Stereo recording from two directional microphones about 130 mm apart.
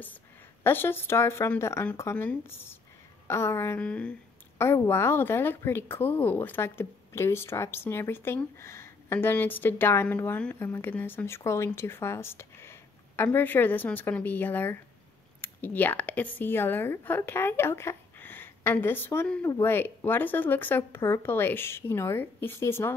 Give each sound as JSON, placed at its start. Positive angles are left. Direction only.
{"t": 0.7, "sound": "a woman's voice", "side_deg": 15}